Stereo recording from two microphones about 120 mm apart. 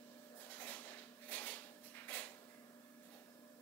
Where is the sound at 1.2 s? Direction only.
15° left (ahead or behind).